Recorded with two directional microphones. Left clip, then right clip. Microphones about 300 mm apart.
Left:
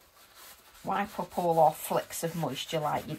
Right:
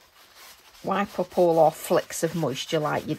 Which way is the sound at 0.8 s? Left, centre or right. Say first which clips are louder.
Right 5 dB; right.